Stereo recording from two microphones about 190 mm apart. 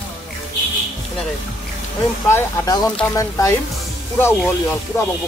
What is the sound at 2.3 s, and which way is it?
Speech, 15° left (ahead or behind).